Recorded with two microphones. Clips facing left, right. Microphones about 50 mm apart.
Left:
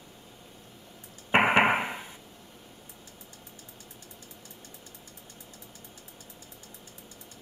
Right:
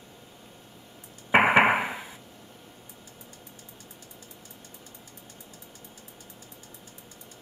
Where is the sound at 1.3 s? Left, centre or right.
Centre.